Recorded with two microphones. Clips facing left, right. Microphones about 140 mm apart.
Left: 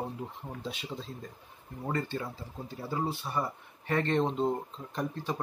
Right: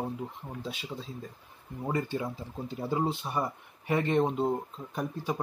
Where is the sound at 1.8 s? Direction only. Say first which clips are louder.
Right 2 dB; 10° right (ahead or behind).